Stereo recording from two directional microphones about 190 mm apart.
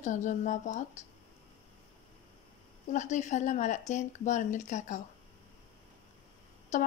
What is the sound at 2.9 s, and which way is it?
A woman's voice, 40° left (ahead or behind).